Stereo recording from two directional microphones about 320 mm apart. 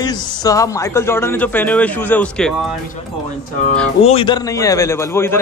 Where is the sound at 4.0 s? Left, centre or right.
Centre.